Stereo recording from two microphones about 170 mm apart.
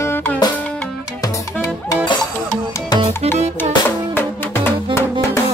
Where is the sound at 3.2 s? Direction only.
40° right (ahead or behind).